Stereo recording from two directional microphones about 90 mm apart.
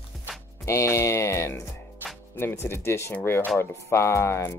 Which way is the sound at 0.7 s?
30° left (ahead or behind).